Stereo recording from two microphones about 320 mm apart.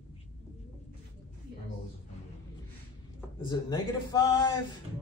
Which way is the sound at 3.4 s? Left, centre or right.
Centre.